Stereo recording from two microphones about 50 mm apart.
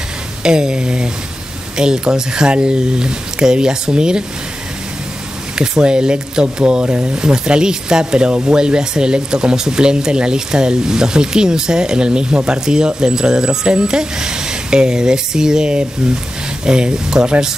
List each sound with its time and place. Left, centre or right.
0.4 s speech: centre
5.6 s speech: centre